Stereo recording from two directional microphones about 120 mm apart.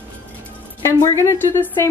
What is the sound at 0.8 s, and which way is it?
A woman's voice, 25° left (ahead or behind).